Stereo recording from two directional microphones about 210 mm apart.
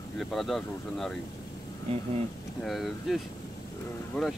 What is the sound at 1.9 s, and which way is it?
Speech, 25° right (ahead or behind).